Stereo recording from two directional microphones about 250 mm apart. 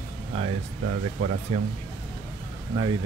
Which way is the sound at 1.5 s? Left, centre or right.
Right.